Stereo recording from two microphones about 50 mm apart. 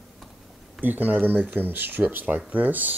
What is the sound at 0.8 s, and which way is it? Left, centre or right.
Speech, right.